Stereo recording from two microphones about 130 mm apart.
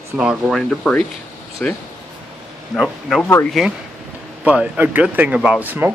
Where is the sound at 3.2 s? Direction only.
15° left (ahead or behind).